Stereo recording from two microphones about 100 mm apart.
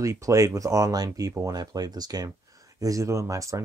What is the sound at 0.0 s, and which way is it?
Speech, 30° right (ahead or behind).